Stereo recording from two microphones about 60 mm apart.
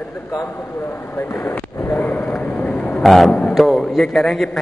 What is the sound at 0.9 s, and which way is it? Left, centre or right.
Speech, left.